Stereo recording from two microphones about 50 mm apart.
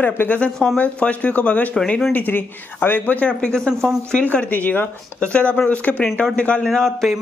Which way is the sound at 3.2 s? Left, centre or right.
Left.